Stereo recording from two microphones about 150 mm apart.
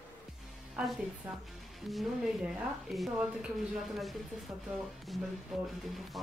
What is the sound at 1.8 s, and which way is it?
A woman's voice, centre (ahead or behind).